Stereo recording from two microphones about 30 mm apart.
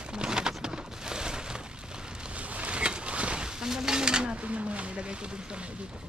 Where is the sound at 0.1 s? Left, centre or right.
Right.